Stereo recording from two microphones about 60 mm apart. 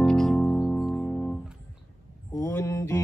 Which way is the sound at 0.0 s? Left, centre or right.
Centre.